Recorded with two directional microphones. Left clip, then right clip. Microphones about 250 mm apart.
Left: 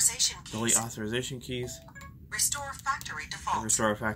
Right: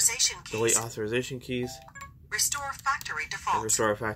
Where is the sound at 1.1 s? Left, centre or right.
Right.